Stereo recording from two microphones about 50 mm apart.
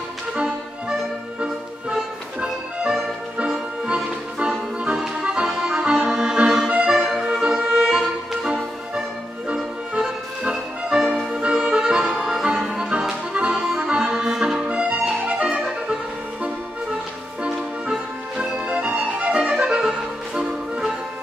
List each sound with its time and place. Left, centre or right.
2.0 s music: centre
5.0 s accordion: centre
6.8 s music: centre
9.6 s music: centre
13.5 s accordion: centre
13.8 s music: centre
14.7 s music: right